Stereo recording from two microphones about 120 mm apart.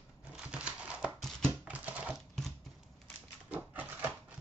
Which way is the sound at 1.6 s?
10° right (ahead or behind).